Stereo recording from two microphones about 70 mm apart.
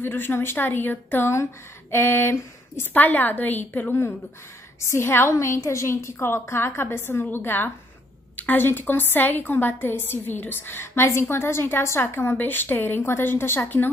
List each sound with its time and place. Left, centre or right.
0.0 s a woman's voice: left
4.7 s a woman's voice: left